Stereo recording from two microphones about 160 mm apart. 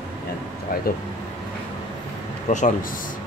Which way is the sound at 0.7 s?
65° left (ahead or behind).